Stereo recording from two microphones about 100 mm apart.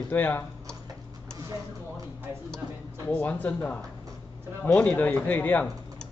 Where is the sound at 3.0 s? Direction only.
15° left (ahead or behind).